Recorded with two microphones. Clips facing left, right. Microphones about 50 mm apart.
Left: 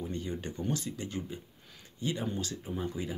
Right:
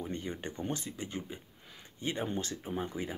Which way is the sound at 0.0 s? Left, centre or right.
Right.